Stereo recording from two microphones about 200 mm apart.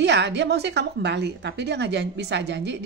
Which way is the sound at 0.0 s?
60° right (ahead or behind).